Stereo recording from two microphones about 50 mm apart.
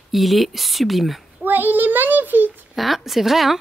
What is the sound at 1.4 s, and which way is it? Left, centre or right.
Speech, right.